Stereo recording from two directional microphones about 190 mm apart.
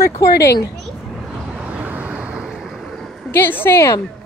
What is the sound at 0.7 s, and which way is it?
Vehicle, centre (ahead or behind).